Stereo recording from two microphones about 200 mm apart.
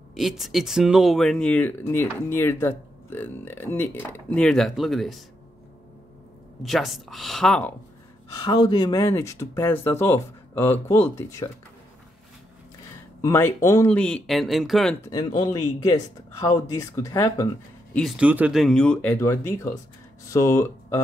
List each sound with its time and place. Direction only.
0.1 s speech: centre (ahead or behind)
6.6 s speech: centre (ahead or behind)
8.4 s speech: 20° left (ahead or behind)
13.2 s speech: 15° left (ahead or behind)
13.9 s speech: 5° left (ahead or behind)
15.0 s speech: 20° left (ahead or behind)
17.9 s speech: centre (ahead or behind)